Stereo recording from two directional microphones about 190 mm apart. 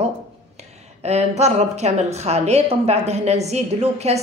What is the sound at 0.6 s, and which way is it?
A woman's voice, 35° right (ahead or behind).